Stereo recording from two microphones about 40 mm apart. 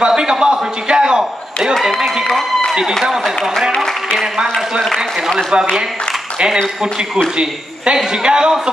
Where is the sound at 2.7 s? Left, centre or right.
Centre.